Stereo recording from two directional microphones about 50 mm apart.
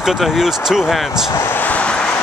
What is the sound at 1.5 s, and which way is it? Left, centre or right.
Vehicle, left.